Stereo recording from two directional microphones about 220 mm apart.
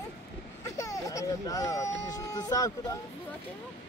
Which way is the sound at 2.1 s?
15° left (ahead or behind).